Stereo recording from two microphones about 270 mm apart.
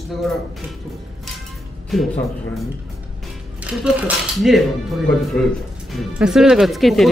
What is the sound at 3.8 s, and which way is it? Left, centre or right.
Speech, centre.